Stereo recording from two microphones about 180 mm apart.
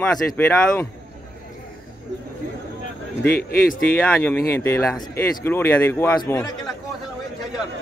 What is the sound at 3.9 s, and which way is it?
A man's voice, 10° left (ahead or behind).